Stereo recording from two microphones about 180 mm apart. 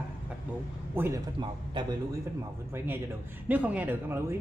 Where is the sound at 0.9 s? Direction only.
15° right (ahead or behind).